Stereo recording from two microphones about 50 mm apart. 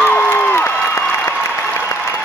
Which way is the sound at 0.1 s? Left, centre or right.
Left.